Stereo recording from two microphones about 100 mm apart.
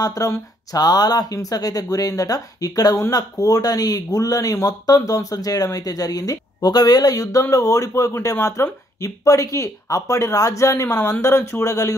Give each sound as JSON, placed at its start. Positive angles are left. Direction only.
{"t": 0.0, "sound": "speech", "side_deg": 35}